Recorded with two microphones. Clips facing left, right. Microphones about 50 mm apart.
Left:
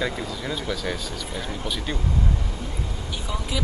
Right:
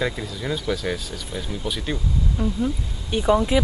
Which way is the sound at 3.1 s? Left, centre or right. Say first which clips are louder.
Right 14 dB; right.